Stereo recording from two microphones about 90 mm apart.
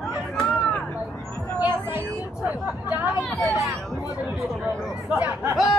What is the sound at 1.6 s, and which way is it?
Speech, 25° right (ahead or behind).